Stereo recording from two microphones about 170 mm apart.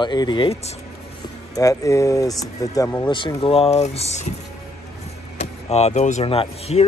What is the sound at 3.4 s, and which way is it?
Speech, 35° left (ahead or behind).